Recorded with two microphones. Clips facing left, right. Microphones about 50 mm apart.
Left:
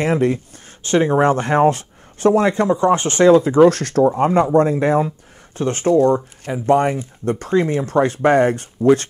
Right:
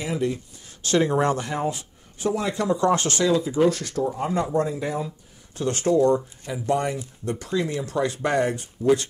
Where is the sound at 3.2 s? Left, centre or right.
Left.